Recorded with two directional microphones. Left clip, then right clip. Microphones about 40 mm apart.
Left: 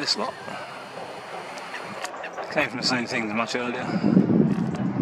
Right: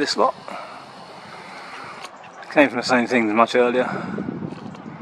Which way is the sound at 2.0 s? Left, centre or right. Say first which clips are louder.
Left 4 dB; left.